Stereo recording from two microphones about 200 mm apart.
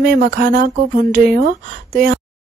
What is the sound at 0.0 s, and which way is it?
Speech, 50° right (ahead or behind).